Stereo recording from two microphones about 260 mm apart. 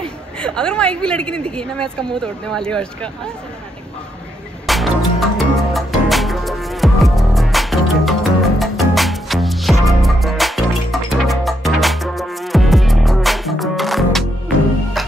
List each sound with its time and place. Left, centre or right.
0.0 s speech: centre
4.6 s music: centre